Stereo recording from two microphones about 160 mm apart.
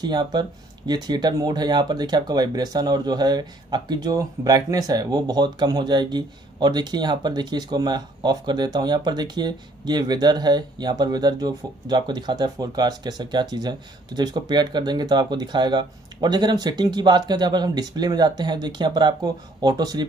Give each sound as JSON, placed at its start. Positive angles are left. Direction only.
{"t": 0.0, "sound": "speech", "side_deg": -25}